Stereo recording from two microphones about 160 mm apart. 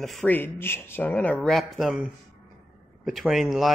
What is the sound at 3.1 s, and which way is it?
Speech, centre (ahead or behind).